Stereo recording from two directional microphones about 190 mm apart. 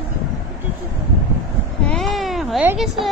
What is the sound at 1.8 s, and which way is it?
Sheep, centre (ahead or behind).